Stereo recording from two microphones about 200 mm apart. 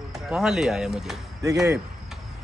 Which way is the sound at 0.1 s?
5° right (ahead or behind).